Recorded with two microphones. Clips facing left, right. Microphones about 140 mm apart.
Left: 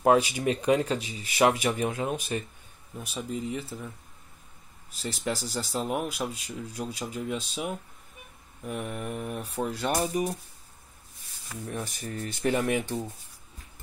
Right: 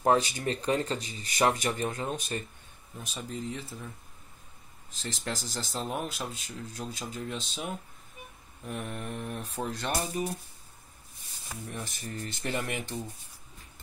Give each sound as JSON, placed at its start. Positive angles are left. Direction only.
{"t": 0.0, "sound": "speech", "side_deg": 10}
{"t": 5.0, "sound": "speech", "side_deg": 5}
{"t": 11.5, "sound": "speech", "side_deg": -10}
{"t": 12.1, "sound": "speech", "side_deg": 10}